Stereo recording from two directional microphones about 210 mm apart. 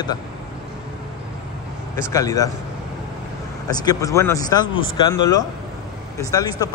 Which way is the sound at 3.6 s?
20° left (ahead or behind).